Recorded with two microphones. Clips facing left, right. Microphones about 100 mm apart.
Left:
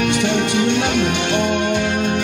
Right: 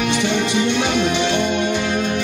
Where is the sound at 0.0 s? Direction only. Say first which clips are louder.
Left 1 dB; 50° left (ahead or behind).